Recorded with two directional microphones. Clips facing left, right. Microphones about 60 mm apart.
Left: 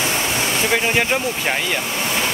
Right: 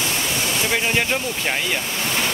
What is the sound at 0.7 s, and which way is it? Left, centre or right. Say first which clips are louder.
Speech: left 3 dB; centre.